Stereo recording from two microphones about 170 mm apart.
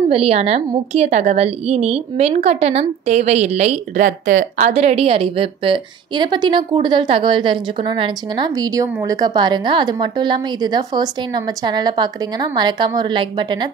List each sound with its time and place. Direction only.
0.1 s a woman's voice: 35° right (ahead or behind)